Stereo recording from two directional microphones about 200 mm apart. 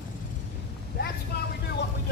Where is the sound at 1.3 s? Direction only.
55° left (ahead or behind).